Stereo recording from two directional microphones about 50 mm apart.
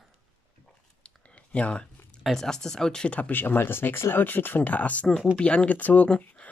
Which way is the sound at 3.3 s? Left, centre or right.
Left.